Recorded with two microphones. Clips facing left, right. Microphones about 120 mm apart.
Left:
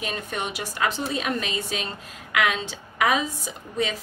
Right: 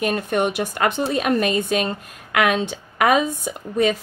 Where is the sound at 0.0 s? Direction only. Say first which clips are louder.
Right 10 dB; 55° right (ahead or behind).